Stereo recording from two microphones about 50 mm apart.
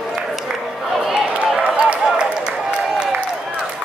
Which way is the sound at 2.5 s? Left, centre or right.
Centre.